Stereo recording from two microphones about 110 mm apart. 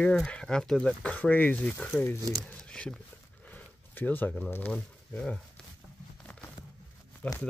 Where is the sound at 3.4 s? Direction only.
15° left (ahead or behind).